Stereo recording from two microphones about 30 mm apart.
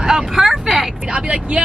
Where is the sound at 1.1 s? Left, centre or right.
Right.